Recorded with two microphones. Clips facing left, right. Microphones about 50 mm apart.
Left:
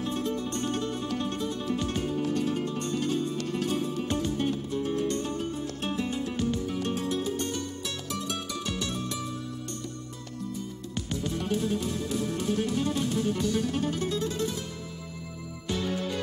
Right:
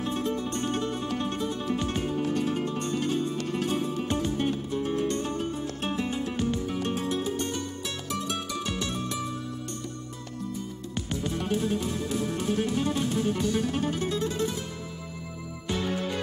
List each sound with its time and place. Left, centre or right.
0.0 s music: right
11.0 s music: right
15.7 s music: right